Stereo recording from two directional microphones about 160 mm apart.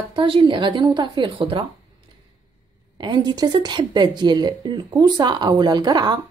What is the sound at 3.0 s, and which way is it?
A woman's voice, 25° right (ahead or behind).